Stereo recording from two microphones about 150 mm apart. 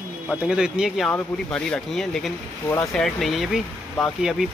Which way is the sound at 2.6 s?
20° left (ahead or behind).